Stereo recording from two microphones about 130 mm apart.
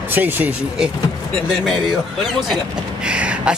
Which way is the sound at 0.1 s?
15° right (ahead or behind).